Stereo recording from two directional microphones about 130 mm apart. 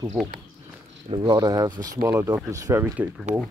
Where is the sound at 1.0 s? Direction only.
35° right (ahead or behind); by 3.1 s 15° right (ahead or behind).